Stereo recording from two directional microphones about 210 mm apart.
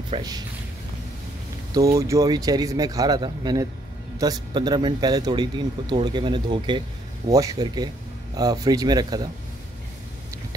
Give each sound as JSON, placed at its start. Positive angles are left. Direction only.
{"t": 0.1, "sound": "speech", "side_deg": -20}
{"t": 1.7, "sound": "speech", "side_deg": -15}